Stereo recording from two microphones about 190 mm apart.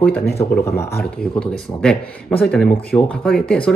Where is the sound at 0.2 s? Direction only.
55° left (ahead or behind).